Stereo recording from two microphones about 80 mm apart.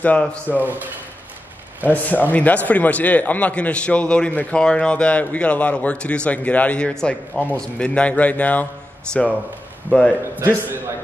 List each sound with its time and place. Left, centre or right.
0.0 s speech: centre
0.6 s a man's voice: right
1.9 s speech: left
9.8 s speech: centre
10.3 s a man's voice: right